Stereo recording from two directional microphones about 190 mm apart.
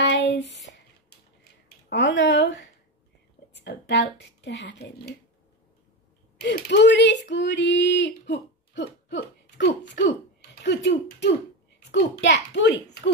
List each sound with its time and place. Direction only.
0.0 s a sound: 70° left (ahead or behind)
1.9 s a woman's voice: 70° left (ahead or behind)
6.4 s a woman's voice: 65° left (ahead or behind)